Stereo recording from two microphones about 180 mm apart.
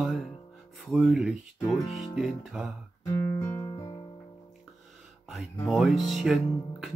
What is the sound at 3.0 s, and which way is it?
Guitar, 15° left (ahead or behind).